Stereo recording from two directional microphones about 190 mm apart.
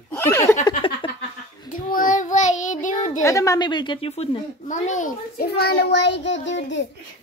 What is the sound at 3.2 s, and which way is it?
A woman's voice, 15° left (ahead or behind).